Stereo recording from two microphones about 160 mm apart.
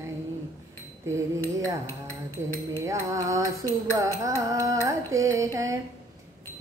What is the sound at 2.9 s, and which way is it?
Carnatic music, 20° right (ahead or behind).